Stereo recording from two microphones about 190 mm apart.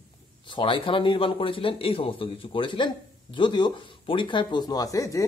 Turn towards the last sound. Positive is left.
turn(degrees=15)  # may be behind; listen again after turning